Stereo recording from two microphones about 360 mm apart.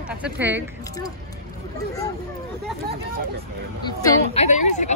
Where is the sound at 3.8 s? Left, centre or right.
Centre.